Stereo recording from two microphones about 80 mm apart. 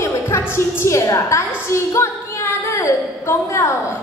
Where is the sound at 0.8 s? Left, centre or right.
Left.